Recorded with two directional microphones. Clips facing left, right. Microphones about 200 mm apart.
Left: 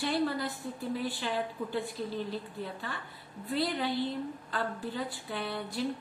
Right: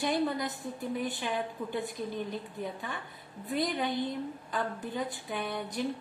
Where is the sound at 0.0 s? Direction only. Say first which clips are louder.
Right 1 dB; 20° right (ahead or behind).